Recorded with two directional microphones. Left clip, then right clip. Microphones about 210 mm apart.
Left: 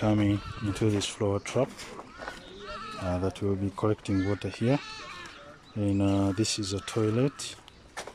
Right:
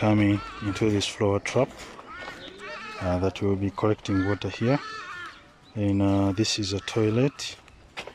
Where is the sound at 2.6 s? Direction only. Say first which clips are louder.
Right 1 dB; 40° right (ahead or behind).